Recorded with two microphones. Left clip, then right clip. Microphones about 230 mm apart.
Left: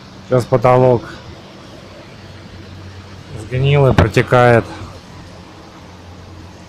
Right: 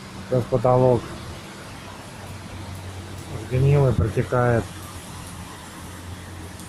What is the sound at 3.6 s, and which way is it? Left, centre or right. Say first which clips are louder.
Speech: left 10 dB; left.